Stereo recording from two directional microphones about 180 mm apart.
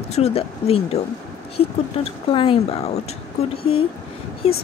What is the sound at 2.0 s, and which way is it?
A woman's voice, 30° left (ahead or behind).